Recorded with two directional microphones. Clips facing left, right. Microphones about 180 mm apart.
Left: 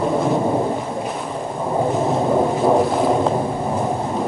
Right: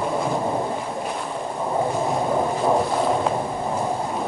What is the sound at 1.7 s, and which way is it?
Boat, 15° left (ahead or behind).